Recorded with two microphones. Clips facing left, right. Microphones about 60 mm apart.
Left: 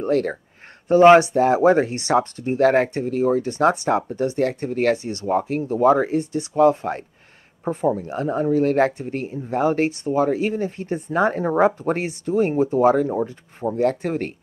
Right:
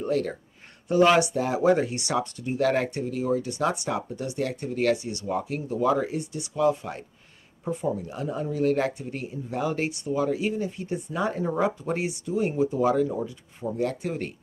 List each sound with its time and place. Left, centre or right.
0.0 s speech: left